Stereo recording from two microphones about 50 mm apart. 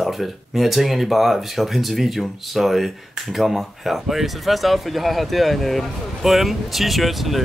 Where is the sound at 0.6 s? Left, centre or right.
Centre.